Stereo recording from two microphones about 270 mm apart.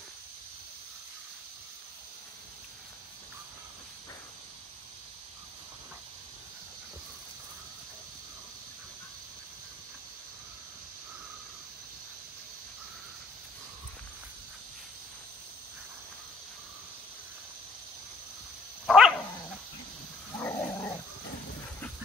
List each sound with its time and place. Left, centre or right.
18.9 s dog: centre